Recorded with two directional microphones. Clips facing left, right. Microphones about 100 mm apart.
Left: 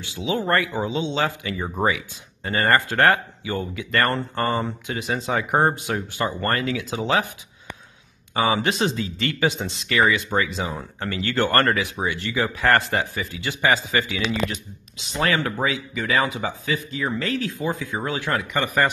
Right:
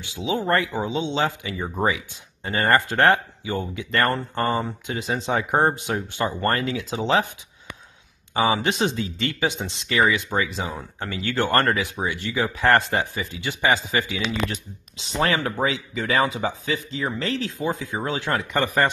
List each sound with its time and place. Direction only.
0.0 s speech: 20° right (ahead or behind)
5.5 s speech: 20° left (ahead or behind)
5.9 s speech: 25° right (ahead or behind)
8.6 s speech: 20° right (ahead or behind)
9.5 s speech: 20° left (ahead or behind)
9.8 s speech: 20° right (ahead or behind)